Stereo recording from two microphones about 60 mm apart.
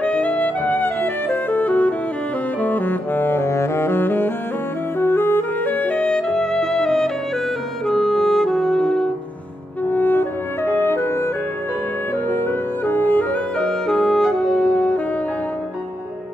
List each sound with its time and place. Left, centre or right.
0.0 s music: left
2.6 s saxophone: left
4.9 s music: left
6.0 s music: centre
7.8 s saxophone: centre
9.8 s music: left
12.3 s music: left
13.6 s music: centre